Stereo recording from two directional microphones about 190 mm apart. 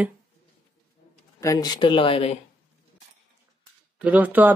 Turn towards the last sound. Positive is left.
turn(degrees=-10)  # may be behind; listen again after turning